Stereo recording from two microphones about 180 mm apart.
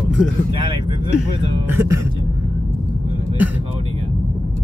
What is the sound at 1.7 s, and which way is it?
Speech, 15° right (ahead or behind).